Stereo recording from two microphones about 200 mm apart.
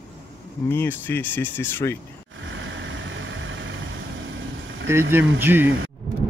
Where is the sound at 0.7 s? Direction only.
10° left (ahead or behind).